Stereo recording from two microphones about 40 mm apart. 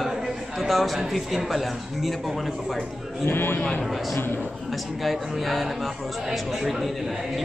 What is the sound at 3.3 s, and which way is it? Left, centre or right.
Speech, left.